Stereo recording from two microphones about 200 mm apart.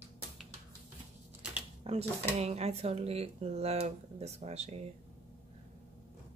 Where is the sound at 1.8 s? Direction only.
30° right (ahead or behind).